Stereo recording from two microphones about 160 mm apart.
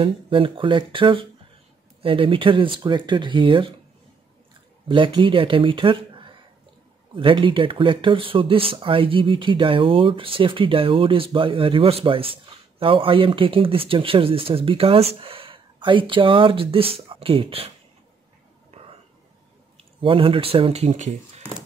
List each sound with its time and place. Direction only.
0.0 s speech: 35° right (ahead or behind)
4.8 s speech: 30° right (ahead or behind)
18.7 s a sound: 35° right (ahead or behind)
19.8 s speech: 35° right (ahead or behind)